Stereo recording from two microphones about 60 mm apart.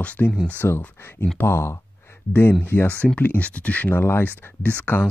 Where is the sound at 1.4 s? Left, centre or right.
Left.